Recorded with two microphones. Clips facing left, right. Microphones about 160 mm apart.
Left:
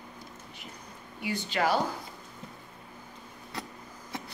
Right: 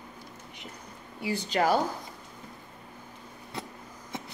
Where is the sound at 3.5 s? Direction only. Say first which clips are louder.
Right 1 dB; 20° right (ahead or behind).